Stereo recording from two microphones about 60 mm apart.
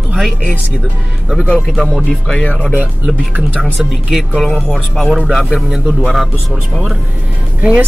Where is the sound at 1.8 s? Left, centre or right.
Centre.